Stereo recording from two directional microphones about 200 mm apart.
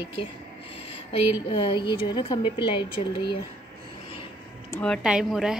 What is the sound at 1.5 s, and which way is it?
A woman's voice, 25° left (ahead or behind).